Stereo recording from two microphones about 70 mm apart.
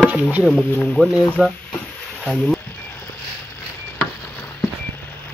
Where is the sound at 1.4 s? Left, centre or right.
Centre.